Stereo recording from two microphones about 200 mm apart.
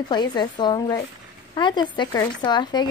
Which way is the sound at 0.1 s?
20° left (ahead or behind).